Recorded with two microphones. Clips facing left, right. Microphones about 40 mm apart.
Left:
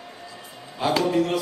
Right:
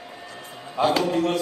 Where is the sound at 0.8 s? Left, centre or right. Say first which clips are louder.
Even; centre.